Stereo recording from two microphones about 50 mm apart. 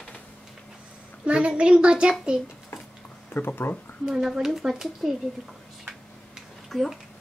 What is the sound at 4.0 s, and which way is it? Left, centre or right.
A woman's voice, centre.